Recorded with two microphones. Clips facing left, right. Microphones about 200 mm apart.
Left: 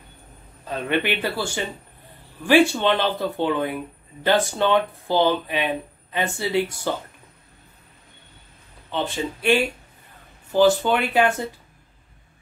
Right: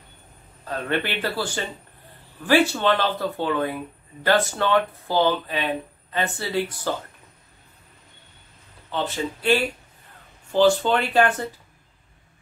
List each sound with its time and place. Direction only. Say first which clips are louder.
0.7 s speech: left 2 dB; 15° left (ahead or behind)
2.7 s speech: left 1 dB; 15° left (ahead or behind)
8.9 s speech: left 1 dB; 15° left (ahead or behind)